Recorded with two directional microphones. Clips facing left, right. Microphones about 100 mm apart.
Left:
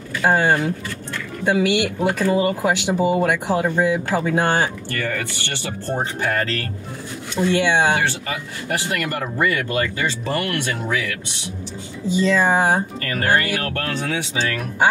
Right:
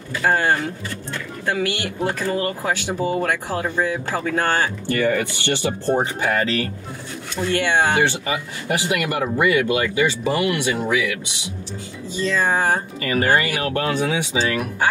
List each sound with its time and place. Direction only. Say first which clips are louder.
0.2 s speech: left 2 dB; 20° left (ahead or behind)
4.8 s speech: right 6 dB; 20° right (ahead or behind)
7.4 s speech: left 3 dB; 15° left (ahead or behind)
8.6 s speech: right 2 dB; 15° right (ahead or behind)
12.1 s speech: left 4 dB; 15° left (ahead or behind)
13.0 s speech: right 1 dB; 15° right (ahead or behind)